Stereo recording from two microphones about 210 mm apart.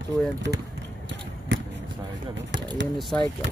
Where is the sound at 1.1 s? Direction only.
60° right (ahead or behind).